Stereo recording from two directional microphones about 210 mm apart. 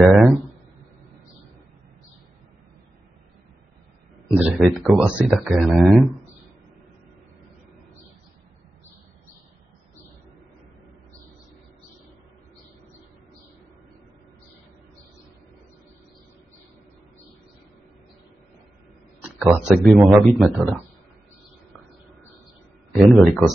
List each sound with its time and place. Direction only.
0.0 s a sound: 5° right (ahead or behind)
4.4 s speech: 5° right (ahead or behind)
19.2 s speech: 5° right (ahead or behind)
22.9 s speech: centre (ahead or behind)